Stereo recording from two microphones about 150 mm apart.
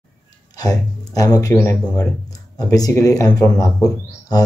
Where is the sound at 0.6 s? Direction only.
25° left (ahead or behind).